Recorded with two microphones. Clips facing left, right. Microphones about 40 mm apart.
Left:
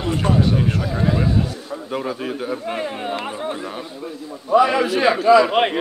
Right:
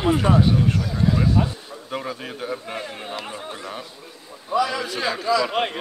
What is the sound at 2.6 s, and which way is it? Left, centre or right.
Speech, centre.